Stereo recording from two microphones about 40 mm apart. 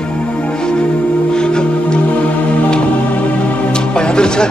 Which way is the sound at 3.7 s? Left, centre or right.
Left.